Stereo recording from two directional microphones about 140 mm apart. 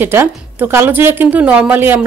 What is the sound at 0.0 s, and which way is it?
A woman's voice, 15° right (ahead or behind).